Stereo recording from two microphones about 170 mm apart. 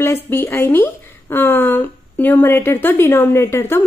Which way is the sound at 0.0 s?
15° left (ahead or behind).